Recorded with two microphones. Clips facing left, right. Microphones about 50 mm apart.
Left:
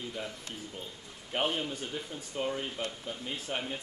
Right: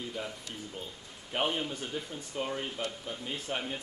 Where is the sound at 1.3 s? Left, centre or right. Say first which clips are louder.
Even; centre.